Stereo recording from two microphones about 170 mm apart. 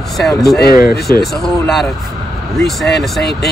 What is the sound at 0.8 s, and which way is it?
Speech, 60° left (ahead or behind).